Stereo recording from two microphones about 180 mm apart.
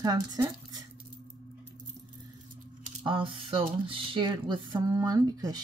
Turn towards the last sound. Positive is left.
turn(degrees=-20)  # may be behind; listen again after turning